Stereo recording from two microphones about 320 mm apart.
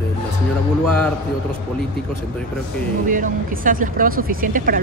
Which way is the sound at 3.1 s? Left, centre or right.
Right.